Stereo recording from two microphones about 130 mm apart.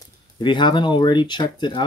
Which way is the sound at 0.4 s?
35° left (ahead or behind).